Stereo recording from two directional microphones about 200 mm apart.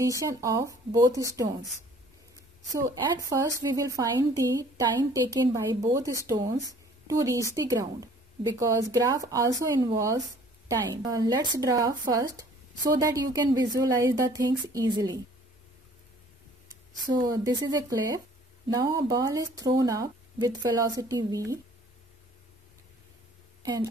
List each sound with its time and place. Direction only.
0.0 s speech: 15° right (ahead or behind)
2.7 s speech: 15° right (ahead or behind)
17.0 s speech: 20° right (ahead or behind)
23.6 s speech: 20° right (ahead or behind)